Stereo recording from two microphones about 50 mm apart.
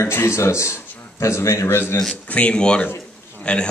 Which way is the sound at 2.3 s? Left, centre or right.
Left.